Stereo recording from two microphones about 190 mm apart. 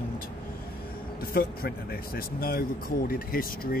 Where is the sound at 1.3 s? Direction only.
50° left (ahead or behind).